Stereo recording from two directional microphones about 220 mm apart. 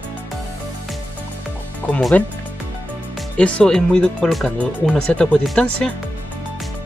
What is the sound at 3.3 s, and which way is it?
Speech, 5° left (ahead or behind).